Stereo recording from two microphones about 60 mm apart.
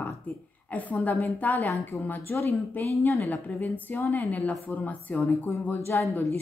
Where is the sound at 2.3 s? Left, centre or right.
Left.